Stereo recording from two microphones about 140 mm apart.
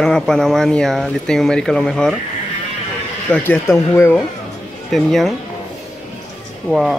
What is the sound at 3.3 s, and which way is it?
Speech, 15° left (ahead or behind).